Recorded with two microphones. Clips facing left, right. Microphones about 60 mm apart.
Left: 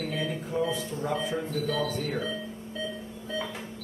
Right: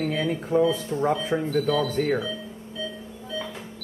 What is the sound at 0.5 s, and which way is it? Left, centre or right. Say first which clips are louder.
Speech: right 9 dB; right.